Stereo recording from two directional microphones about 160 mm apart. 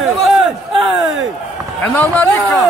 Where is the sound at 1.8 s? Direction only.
5° left (ahead or behind).